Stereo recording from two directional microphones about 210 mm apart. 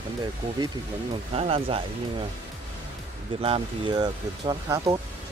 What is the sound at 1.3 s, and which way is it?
Speech, 25° right (ahead or behind).